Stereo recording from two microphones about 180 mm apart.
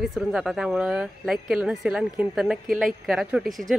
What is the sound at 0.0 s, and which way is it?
Speech, centre (ahead or behind).